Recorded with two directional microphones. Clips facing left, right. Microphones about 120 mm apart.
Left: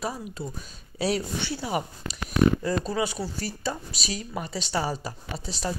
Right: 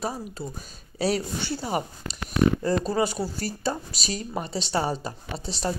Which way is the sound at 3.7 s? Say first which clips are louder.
Right 3 dB; 35° right (ahead or behind).